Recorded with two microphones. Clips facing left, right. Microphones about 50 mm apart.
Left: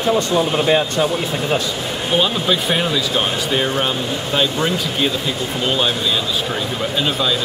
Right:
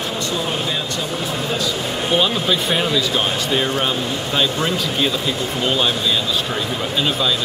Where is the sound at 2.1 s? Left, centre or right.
Centre.